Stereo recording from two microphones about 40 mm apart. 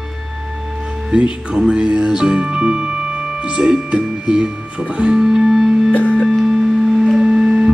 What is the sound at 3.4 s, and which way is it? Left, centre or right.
Speech, right.